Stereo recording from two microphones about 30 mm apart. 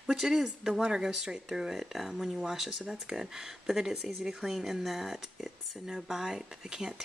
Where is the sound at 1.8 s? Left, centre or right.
Centre; by 7.0 s right.